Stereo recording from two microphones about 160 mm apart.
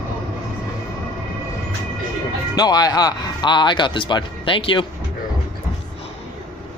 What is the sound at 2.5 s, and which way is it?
Speech, 25° left (ahead or behind).